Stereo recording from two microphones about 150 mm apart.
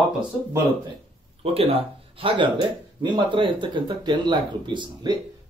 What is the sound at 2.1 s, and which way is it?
Speech, 35° right (ahead or behind).